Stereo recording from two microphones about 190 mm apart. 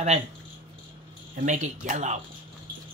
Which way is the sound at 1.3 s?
40° right (ahead or behind).